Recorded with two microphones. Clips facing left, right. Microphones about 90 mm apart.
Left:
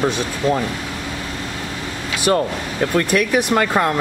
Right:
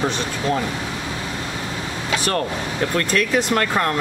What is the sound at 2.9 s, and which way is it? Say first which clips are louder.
Speech: left 3 dB; 15° left (ahead or behind).